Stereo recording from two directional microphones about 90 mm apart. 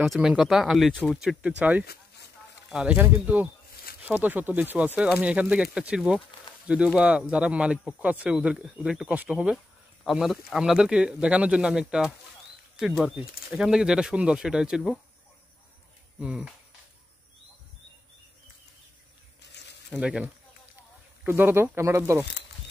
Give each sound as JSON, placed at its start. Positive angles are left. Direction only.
{"t": 0.0, "sound": "speech", "side_deg": -5}
{"t": 1.1, "sound": "speech", "side_deg": -10}
{"t": 10.0, "sound": "speech", "side_deg": -5}
{"t": 16.2, "sound": "speech", "side_deg": -10}
{"t": 20.0, "sound": "speech", "side_deg": -10}
{"t": 21.3, "sound": "speech", "side_deg": -25}